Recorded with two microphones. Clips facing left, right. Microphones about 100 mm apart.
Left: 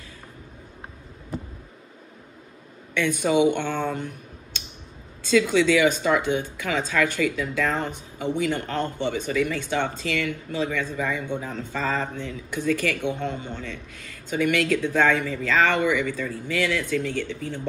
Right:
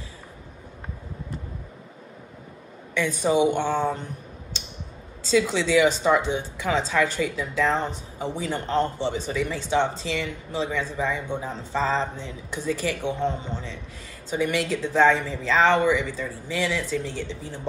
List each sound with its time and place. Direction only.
3.4 s a woman's voice: 15° right (ahead or behind)
5.3 s a woman's voice: 20° right (ahead or behind)